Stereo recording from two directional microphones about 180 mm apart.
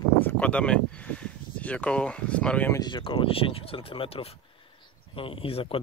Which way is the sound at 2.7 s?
25° left (ahead or behind).